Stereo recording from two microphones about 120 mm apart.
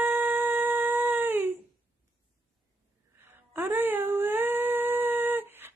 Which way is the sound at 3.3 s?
20° right (ahead or behind).